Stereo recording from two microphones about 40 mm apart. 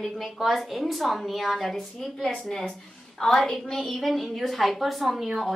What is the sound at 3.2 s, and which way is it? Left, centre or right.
Speech, centre.